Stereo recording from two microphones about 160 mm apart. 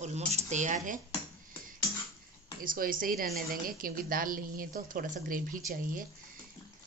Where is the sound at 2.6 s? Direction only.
60° right (ahead or behind).